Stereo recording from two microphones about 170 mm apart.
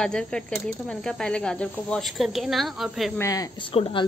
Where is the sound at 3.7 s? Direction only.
30° left (ahead or behind).